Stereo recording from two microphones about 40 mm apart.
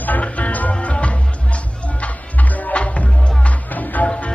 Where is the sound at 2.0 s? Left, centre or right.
Left.